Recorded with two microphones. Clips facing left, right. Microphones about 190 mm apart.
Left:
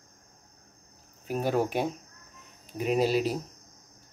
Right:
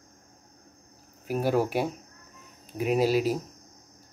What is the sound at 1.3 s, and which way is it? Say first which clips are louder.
Speech: right 2 dB; 10° right (ahead or behind).